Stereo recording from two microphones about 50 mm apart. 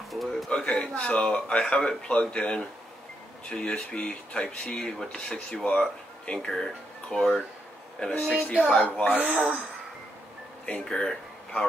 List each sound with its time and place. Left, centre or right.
0.1 s pigeon: centre
0.5 s speech: left
8.8 s speech: left
9.2 s speech: right
10.6 s speech: centre